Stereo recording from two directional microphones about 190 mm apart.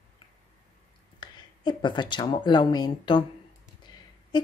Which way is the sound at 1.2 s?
20° left (ahead or behind).